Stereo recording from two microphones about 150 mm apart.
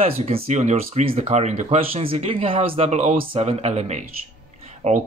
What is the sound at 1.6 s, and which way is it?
Speech, 40° right (ahead or behind).